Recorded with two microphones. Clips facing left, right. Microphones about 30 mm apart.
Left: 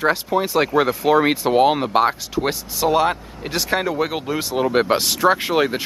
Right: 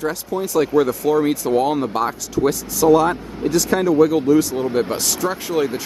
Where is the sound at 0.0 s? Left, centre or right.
Left.